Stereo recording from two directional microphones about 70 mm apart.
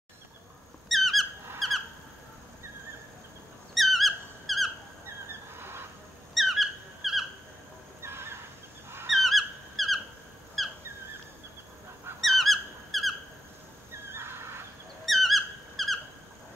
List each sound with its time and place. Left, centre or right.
0.8 s squeak: centre
3.7 s squeak: centre
5.5 s squeal: right
6.3 s squeak: centre
8.0 s a sound: right
9.1 s a sound: centre
12.2 s squeak: centre
14.1 s neigh: right
15.0 s squeak: centre